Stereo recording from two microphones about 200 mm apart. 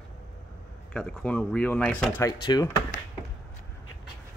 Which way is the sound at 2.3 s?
20° left (ahead or behind).